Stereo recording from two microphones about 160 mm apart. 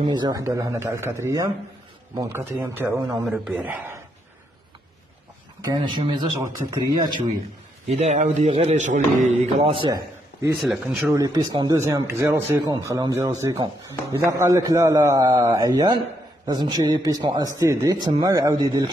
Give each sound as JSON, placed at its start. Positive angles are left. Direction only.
{"t": 0.0, "sound": "speech", "side_deg": -25}
{"t": 5.6, "sound": "speech", "side_deg": -25}
{"t": 8.0, "sound": "a man's voice", "side_deg": -45}
{"t": 9.8, "sound": "a sound", "side_deg": -25}
{"t": 10.6, "sound": "speech", "side_deg": 0}
{"t": 11.1, "sound": "speech", "side_deg": -25}